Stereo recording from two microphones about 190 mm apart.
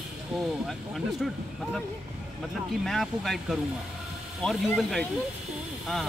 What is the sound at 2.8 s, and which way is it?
Speech, centre (ahead or behind).